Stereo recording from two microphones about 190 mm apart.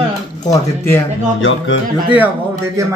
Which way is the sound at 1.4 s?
90° left.